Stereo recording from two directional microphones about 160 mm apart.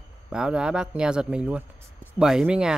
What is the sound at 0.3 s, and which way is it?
Speech, 5° right (ahead or behind).